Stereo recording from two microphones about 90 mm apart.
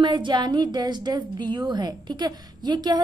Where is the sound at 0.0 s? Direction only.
60° right (ahead or behind).